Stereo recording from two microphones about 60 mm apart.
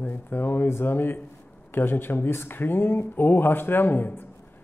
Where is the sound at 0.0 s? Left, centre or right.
Left.